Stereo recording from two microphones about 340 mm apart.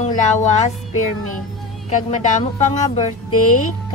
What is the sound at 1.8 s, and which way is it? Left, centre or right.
Speech, left.